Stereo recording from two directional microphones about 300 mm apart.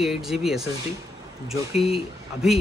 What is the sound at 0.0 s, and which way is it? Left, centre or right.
Speech, centre.